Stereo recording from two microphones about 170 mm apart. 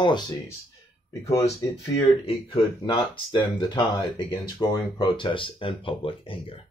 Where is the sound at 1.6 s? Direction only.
20° left (ahead or behind).